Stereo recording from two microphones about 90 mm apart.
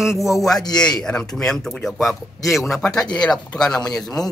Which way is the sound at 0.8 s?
10° left (ahead or behind).